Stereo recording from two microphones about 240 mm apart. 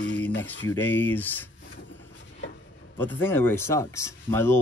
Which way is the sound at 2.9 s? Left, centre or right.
Centre.